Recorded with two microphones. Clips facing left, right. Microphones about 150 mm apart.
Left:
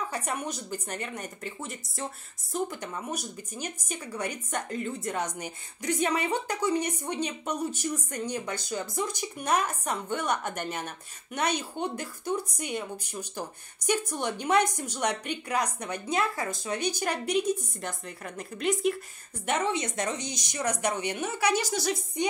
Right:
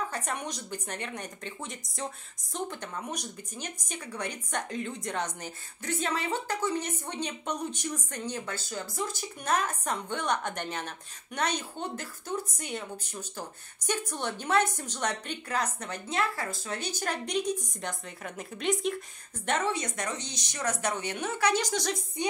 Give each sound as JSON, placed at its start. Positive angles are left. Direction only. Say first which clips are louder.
{"t": 0.1, "sound": "speech", "louder": "left 2 dB", "side_deg": 5}
{"t": 19.7, "sound": "speech", "louder": "left 3 dB", "side_deg": 25}
{"t": 20.2, "sound": "speech", "louder": "left 4 dB", "side_deg": 10}